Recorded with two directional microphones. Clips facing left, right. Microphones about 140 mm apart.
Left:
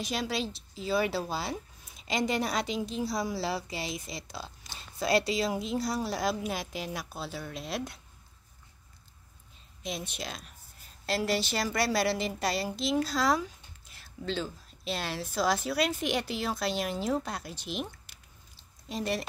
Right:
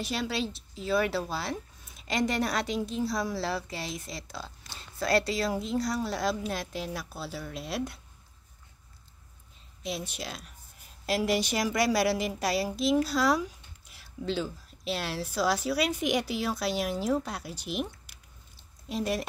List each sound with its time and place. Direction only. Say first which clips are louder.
0.0 s a woman's voice: right 1 dB; centre (ahead or behind)
4.9 s speech: even; 20° left (ahead or behind)
5.9 s a woman's voice: right 1 dB; 5° left (ahead or behind)
9.8 s a woman's voice: right 1 dB; 5° right (ahead or behind)